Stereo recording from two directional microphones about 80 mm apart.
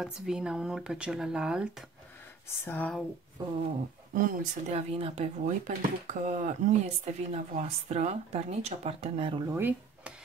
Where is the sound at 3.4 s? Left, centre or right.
Right.